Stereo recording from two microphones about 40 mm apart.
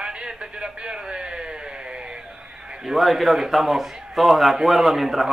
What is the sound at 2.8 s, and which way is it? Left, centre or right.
A man's voice, centre.